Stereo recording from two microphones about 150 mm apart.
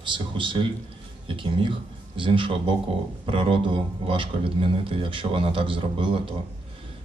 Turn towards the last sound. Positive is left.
turn(degrees=-35)  # may be behind; listen again after turning